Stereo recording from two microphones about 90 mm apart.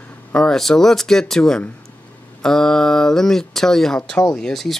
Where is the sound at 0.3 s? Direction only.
5° left (ahead or behind).